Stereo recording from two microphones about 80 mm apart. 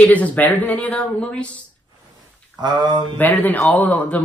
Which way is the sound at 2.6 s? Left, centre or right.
Right.